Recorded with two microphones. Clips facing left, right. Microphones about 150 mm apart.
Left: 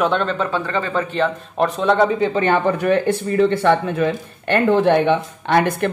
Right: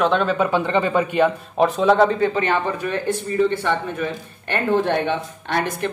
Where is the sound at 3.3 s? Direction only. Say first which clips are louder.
Left 5 dB; 70° left (ahead or behind).